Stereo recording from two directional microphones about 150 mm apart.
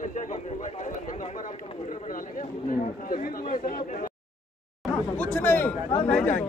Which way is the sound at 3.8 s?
60° left (ahead or behind).